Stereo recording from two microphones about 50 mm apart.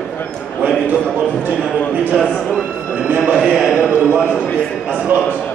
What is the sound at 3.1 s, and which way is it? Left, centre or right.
Speech, right.